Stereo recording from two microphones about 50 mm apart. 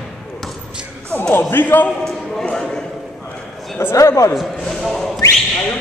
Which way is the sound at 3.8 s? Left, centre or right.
Left.